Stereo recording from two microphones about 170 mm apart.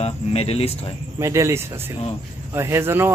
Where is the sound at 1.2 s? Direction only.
15° right (ahead or behind).